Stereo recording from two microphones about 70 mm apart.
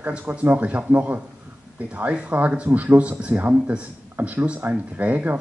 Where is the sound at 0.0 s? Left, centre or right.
Right.